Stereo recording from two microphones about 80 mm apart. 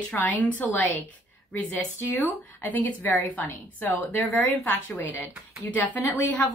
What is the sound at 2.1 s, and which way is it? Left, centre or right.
Speech, left.